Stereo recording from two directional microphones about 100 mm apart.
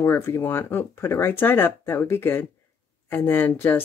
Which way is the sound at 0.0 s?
25° left (ahead or behind).